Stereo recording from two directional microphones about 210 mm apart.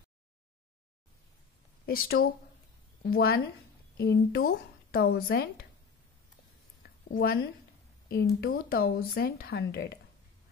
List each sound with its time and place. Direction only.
1.9 s speech: 45° left (ahead or behind)
7.1 s a woman's voice: 45° left (ahead or behind)